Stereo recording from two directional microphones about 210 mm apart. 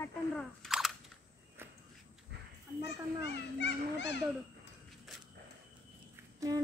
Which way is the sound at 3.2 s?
55° left (ahead or behind).